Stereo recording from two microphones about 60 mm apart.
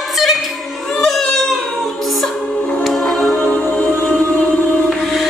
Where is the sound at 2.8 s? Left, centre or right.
Centre.